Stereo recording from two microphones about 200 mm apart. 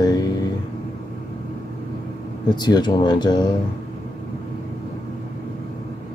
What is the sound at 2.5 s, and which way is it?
Speech, 20° left (ahead or behind).